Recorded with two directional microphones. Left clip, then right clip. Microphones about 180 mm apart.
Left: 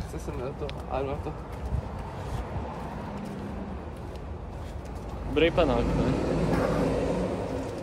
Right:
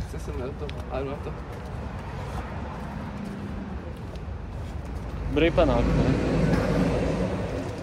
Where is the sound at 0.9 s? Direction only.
50° left (ahead or behind).